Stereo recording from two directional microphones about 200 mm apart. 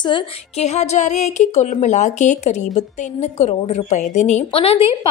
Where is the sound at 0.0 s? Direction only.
30° left (ahead or behind).